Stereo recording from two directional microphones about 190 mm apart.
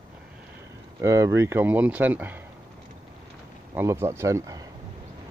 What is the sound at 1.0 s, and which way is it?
Speech, 15° right (ahead or behind).